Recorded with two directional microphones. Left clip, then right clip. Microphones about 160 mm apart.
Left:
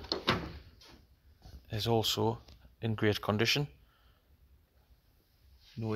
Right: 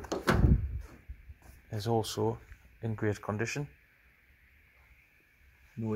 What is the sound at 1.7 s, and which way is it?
Speech, centre (ahead or behind).